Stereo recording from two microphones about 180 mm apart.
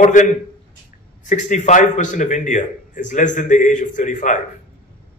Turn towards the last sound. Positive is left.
turn(degrees=45)  # may be behind; listen again after turning